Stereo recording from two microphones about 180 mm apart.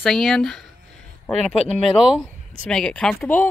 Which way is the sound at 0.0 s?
Centre (ahead or behind).